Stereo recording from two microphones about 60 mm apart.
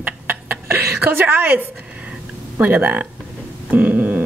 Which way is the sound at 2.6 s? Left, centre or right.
Right.